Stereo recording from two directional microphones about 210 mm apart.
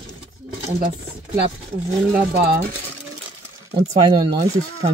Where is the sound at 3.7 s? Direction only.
30° right (ahead or behind).